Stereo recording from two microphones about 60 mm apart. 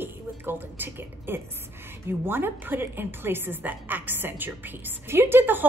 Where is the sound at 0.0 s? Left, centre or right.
Right.